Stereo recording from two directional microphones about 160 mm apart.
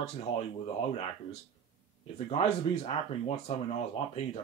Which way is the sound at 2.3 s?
35° left (ahead or behind).